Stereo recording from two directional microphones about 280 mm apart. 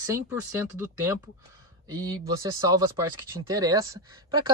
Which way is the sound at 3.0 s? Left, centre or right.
Centre.